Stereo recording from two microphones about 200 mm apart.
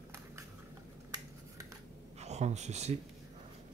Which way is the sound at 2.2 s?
35° right (ahead or behind).